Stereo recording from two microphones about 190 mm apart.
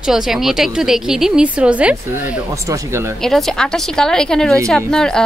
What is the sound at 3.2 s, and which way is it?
Speech, centre (ahead or behind).